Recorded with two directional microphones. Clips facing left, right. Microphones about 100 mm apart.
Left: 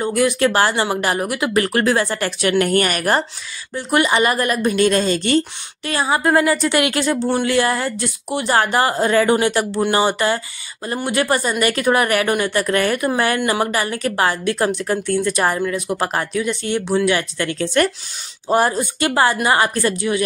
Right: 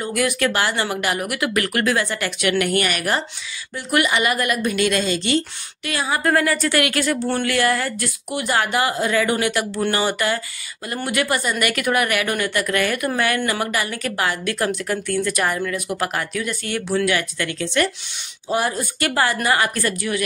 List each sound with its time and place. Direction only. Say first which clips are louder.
0.0 s speech: left 4 dB; 30° left (ahead or behind)
5.9 s a woman's voice: left 3 dB; 30° left (ahead or behind)
18.8 s a woman's voice: left 4 dB; 25° left (ahead or behind)